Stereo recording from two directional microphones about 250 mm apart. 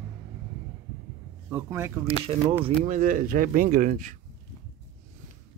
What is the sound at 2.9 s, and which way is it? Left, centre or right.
Speech, right.